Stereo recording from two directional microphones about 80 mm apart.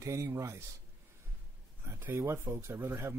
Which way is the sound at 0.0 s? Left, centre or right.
Right.